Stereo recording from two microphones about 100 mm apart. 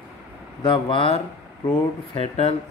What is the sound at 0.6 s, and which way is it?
Speech, 55° left (ahead or behind).